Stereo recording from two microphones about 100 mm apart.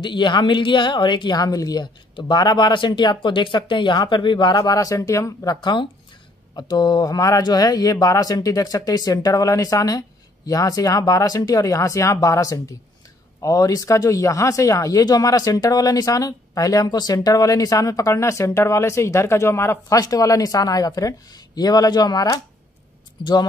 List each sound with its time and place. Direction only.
0.0 s speech: 50° left (ahead or behind); by 5.6 s 35° left (ahead or behind)
5.6 s speech: 50° left (ahead or behind)